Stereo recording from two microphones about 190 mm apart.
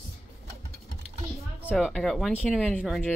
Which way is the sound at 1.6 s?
Centre (ahead or behind).